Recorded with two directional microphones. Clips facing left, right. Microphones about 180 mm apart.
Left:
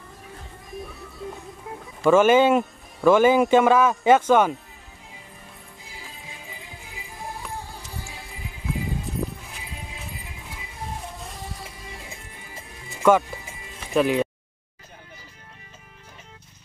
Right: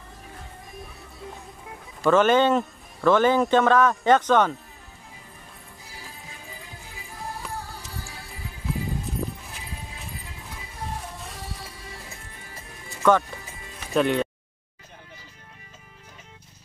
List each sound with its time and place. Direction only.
2.0 s speech: 10° left (ahead or behind)
5.9 s music: 15° left (ahead or behind)
13.9 s speech: centre (ahead or behind)